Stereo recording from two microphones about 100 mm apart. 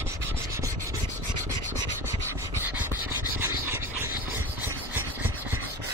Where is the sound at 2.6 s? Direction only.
20° right (ahead or behind).